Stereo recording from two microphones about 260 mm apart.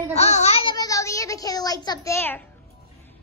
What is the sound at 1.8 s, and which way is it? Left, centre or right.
Speech, centre.